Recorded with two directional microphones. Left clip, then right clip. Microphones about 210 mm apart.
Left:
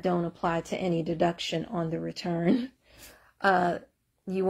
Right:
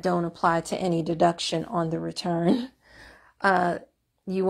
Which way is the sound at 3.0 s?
15° right (ahead or behind).